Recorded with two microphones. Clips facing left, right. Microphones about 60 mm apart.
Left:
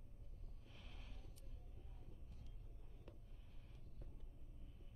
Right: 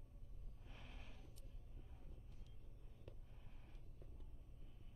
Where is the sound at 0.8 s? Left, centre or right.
Right.